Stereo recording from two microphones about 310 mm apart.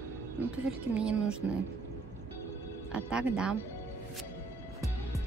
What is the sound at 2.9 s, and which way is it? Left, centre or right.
Speech, centre.